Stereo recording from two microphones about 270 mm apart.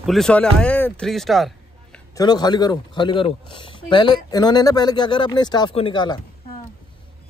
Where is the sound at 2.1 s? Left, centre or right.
Centre.